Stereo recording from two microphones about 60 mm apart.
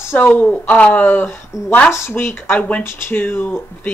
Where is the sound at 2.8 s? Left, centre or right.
Left.